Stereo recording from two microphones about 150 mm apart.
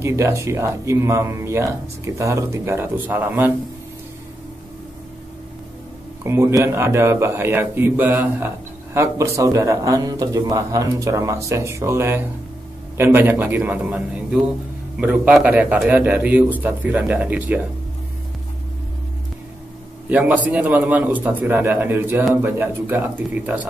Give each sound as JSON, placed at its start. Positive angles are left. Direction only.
{"t": 0.0, "sound": "speech", "side_deg": -20}
{"t": 6.2, "sound": "a man's voice", "side_deg": -20}
{"t": 20.1, "sound": "a man's voice", "side_deg": -10}